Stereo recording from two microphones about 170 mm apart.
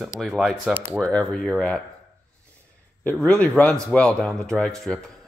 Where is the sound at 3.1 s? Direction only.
5° left (ahead or behind).